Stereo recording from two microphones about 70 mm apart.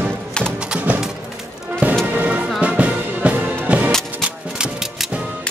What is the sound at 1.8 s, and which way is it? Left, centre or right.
Music, right.